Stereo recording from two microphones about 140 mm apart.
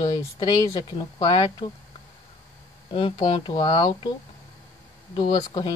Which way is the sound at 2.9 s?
35° left (ahead or behind).